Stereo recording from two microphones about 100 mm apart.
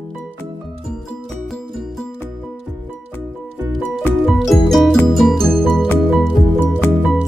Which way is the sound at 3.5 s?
25° right (ahead or behind).